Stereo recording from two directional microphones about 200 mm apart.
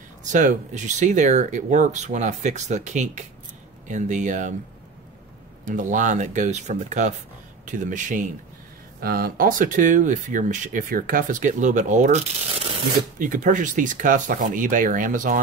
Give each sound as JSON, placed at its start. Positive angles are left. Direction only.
{"t": 0.2, "sound": "speech", "side_deg": -40}
{"t": 5.7, "sound": "speech", "side_deg": -40}
{"t": 13.2, "sound": "speech", "side_deg": -40}